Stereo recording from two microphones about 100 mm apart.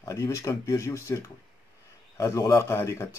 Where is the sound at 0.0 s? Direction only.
35° left (ahead or behind).